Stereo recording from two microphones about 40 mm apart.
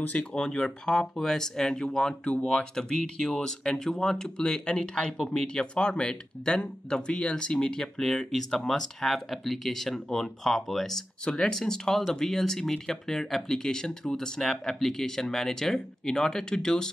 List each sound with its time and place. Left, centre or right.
0.2 s speech: left